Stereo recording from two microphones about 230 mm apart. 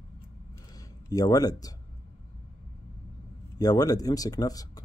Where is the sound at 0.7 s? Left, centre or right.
Centre.